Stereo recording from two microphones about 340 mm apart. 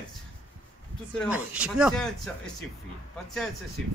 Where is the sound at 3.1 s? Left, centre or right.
Centre.